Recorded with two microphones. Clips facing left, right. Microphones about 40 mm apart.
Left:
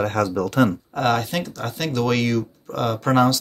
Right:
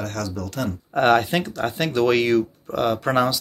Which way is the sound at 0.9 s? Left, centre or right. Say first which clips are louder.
Right 4 dB; centre.